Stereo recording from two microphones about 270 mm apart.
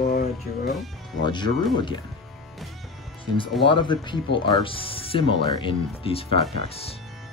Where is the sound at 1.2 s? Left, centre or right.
Centre.